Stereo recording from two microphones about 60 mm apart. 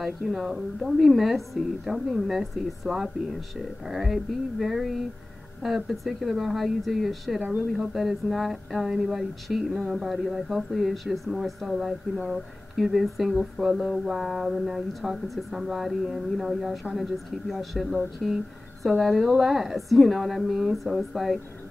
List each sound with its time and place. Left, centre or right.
0.0 s speech: centre
7.4 s speech: right
7.9 s speech: centre